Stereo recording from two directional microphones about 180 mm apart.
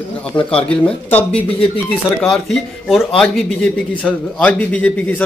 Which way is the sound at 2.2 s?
Centre (ahead or behind).